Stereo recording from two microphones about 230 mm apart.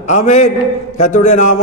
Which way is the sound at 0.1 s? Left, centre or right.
Left.